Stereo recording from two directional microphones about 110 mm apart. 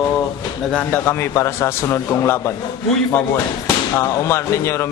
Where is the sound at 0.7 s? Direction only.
15° left (ahead or behind).